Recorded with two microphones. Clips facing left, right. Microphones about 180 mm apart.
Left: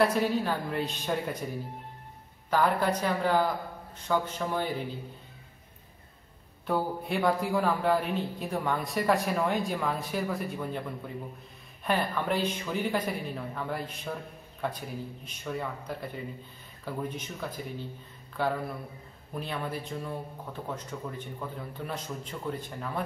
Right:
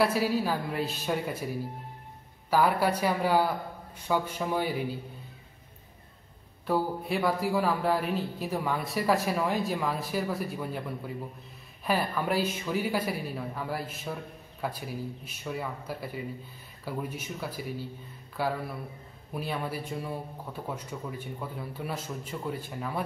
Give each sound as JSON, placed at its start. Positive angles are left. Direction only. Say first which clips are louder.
{"t": 0.0, "sound": "a man's voice", "louder": "even", "side_deg": -5}
{"t": 2.5, "sound": "a man's voice", "louder": "right 1 dB", "side_deg": -10}
{"t": 6.6, "sound": "a man's voice", "louder": "right 1 dB", "side_deg": 0}
{"t": 11.8, "sound": "a man's voice", "louder": "even", "side_deg": -5}